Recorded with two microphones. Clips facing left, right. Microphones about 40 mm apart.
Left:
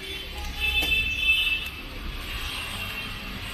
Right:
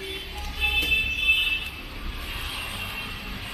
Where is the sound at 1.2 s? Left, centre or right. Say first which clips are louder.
Even; centre.